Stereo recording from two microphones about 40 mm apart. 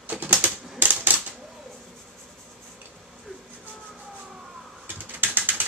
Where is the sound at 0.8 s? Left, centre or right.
Right.